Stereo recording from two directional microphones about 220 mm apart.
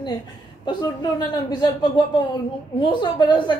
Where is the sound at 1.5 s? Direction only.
20° left (ahead or behind).